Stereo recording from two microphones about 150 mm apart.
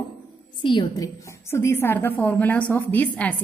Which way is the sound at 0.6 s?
25° left (ahead or behind).